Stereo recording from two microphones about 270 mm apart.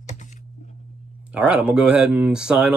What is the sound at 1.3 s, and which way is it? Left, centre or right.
Speech, centre.